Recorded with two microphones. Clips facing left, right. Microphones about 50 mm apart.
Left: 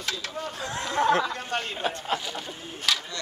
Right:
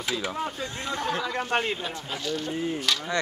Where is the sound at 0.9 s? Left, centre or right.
Left.